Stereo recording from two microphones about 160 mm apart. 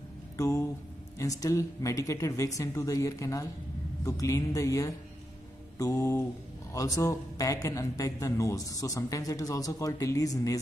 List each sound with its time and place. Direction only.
0.4 s speech: 20° left (ahead or behind)